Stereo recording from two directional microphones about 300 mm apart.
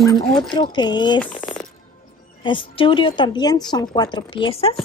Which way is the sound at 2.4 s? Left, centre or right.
Centre.